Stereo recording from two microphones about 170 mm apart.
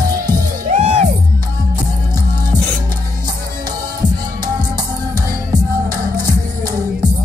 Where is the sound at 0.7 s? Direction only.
40° right (ahead or behind).